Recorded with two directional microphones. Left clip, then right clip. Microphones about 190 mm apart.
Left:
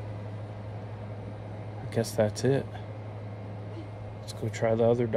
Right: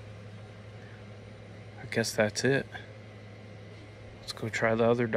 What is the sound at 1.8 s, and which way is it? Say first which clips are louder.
Speech: even; 15° left (ahead or behind).